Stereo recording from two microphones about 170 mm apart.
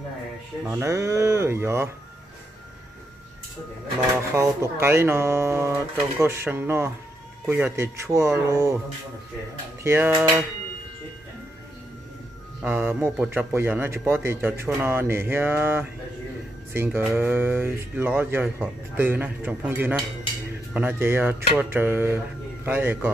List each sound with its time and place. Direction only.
0.7 s a man's voice: 15° right (ahead or behind)
4.1 s a man's voice: 15° right (ahead or behind)
9.8 s a man's voice: 15° right (ahead or behind)
12.6 s a man's voice: 15° right (ahead or behind)